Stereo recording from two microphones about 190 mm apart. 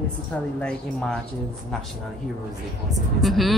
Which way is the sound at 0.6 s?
5° left (ahead or behind).